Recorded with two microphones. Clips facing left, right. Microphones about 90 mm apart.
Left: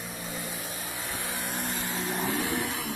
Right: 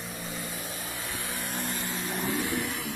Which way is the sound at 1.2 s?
15° left (ahead or behind).